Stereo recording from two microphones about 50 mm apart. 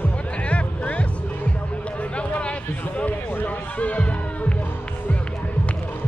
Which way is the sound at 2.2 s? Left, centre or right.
Left.